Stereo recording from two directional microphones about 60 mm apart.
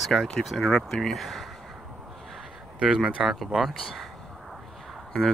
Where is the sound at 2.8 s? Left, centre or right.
Centre.